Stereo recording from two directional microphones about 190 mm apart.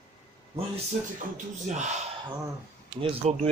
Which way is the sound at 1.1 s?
40° right (ahead or behind).